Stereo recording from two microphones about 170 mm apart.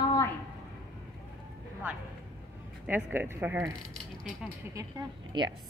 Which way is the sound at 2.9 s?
10° right (ahead or behind).